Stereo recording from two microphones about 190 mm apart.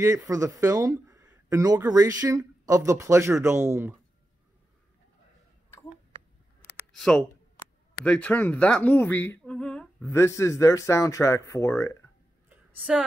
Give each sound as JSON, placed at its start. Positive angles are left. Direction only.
{"t": 0.0, "sound": "speech", "side_deg": -15}
{"t": 6.9, "sound": "speech", "side_deg": 0}
{"t": 12.4, "sound": "a sound", "side_deg": -5}